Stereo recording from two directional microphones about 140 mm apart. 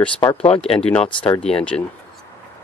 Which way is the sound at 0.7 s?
10° left (ahead or behind).